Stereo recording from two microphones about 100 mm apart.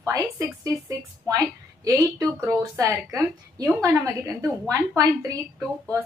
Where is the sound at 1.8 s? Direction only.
30° right (ahead or behind).